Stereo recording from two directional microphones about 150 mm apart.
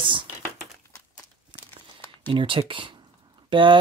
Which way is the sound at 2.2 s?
35° right (ahead or behind).